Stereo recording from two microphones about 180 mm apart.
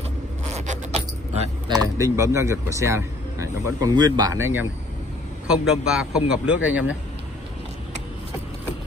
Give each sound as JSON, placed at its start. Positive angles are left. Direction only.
{"t": 0.6, "sound": "keys jangling", "side_deg": -40}
{"t": 2.0, "sound": "a man's voice", "side_deg": -15}